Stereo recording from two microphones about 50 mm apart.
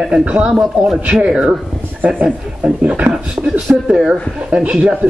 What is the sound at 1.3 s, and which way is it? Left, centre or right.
Speech, centre.